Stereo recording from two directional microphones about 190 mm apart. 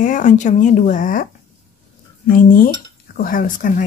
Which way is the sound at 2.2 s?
50° left (ahead or behind).